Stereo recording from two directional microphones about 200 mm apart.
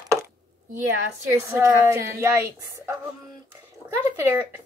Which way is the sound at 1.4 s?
15° right (ahead or behind).